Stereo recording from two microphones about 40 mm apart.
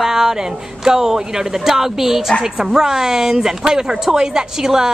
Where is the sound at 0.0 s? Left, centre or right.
Centre.